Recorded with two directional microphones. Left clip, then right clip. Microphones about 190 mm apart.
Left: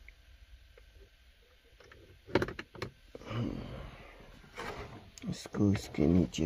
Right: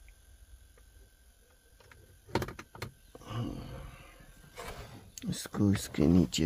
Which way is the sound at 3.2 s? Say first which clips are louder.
Left 1 dB; 10° right (ahead or behind).